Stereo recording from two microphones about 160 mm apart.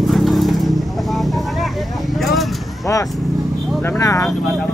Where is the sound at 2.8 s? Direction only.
20° left (ahead or behind).